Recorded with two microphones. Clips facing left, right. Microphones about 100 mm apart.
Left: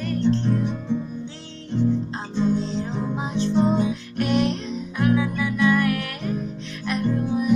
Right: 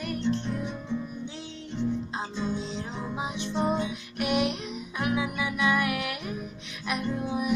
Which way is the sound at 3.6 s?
35° left (ahead or behind).